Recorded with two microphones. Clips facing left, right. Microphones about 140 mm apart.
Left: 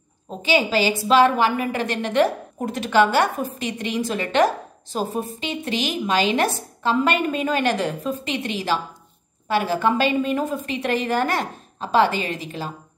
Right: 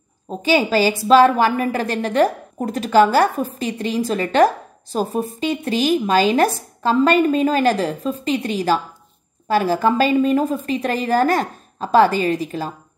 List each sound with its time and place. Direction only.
0.5 s speech: 45° right (ahead or behind)